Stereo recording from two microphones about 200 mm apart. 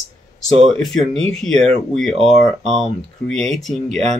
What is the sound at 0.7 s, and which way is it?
Speech, centre (ahead or behind).